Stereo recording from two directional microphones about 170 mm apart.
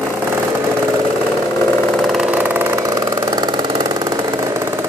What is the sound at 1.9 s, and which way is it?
Engine, centre (ahead or behind).